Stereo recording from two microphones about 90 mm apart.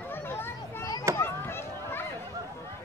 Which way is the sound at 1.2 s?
25° left (ahead or behind).